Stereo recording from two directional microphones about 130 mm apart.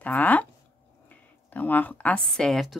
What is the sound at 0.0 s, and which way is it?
Speech, 10° left (ahead or behind).